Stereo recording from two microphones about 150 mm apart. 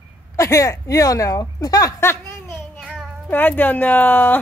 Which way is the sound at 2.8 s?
5° left (ahead or behind).